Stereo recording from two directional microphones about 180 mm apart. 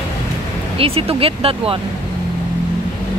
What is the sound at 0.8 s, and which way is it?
Speech, 30° right (ahead or behind).